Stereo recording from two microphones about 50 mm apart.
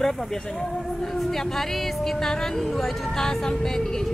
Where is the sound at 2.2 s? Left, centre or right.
Centre.